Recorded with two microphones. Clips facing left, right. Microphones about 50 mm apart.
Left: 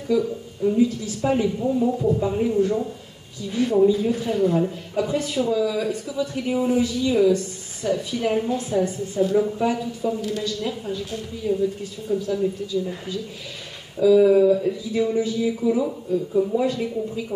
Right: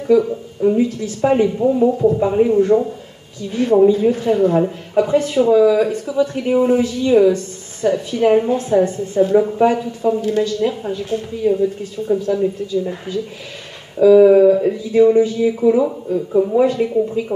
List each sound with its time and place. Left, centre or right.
0.0 s speech: right